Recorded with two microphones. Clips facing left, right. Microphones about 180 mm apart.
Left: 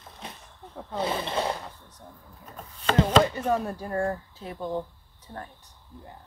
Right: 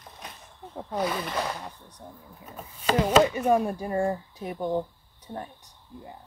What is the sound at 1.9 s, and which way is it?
Speech, 10° right (ahead or behind).